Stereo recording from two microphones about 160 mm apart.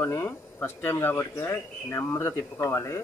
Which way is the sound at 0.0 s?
15° left (ahead or behind).